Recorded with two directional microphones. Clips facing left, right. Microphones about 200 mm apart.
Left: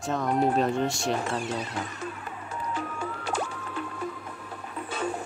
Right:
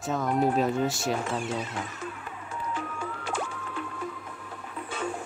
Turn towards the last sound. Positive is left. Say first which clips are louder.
# left 2 dB
turn(degrees=40)  # may be behind; listen again after turning